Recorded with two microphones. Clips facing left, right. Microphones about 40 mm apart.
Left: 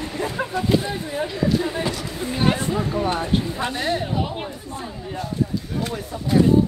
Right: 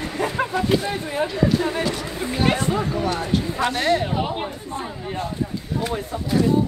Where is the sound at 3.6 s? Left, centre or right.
Right.